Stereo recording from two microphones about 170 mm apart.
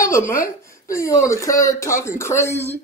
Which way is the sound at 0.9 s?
20° left (ahead or behind).